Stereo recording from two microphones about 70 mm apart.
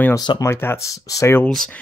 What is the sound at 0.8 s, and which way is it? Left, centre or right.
Speech, left.